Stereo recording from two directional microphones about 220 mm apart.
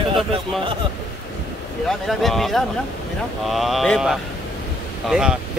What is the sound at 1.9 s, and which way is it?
Speech, centre (ahead or behind).